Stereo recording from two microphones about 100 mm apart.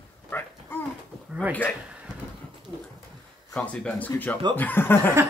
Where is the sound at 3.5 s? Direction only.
10° left (ahead or behind).